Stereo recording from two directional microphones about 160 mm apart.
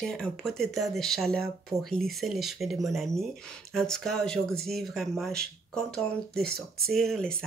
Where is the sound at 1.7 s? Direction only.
20° right (ahead or behind).